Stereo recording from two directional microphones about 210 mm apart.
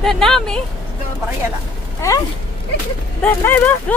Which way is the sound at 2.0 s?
15° left (ahead or behind).